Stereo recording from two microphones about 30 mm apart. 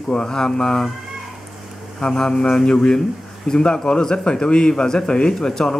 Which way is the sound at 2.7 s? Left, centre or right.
Centre.